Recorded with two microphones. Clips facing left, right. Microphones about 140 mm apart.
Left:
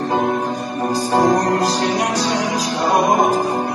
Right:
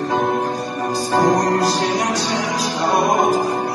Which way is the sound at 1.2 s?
30° left (ahead or behind).